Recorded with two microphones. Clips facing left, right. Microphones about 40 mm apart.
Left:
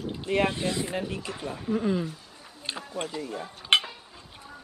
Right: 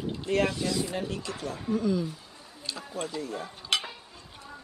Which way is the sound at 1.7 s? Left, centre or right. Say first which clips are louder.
Left 1 dB; left.